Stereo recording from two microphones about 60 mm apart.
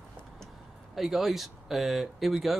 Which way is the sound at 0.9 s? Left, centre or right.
Centre.